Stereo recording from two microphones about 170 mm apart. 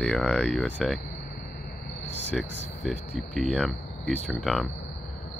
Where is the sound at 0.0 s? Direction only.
5° left (ahead or behind).